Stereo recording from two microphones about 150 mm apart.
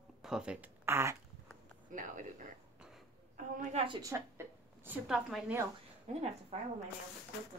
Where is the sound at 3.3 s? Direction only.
50° right (ahead or behind).